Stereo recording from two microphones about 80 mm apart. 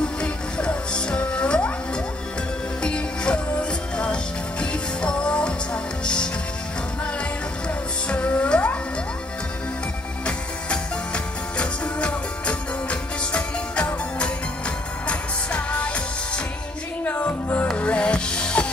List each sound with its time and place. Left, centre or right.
0.0 s music: centre
2.8 s music: centre
8.1 s music: centre
11.5 s music: centre
17.0 s music: centre